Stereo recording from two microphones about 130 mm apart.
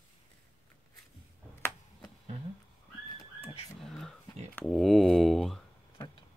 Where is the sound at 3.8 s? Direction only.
5° left (ahead or behind).